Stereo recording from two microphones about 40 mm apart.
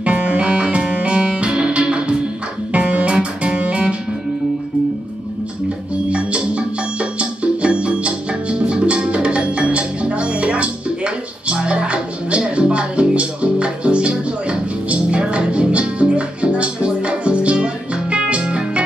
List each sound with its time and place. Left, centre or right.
0.0 s music: right
6.0 s music: right